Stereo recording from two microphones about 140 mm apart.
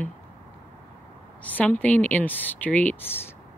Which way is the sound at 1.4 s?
10° left (ahead or behind).